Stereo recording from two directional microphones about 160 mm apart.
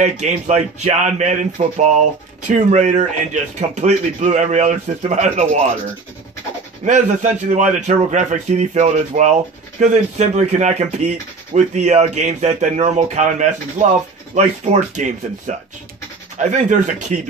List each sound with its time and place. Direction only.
0.0 s speech: 45° right (ahead or behind)
6.8 s speech: 50° right (ahead or behind)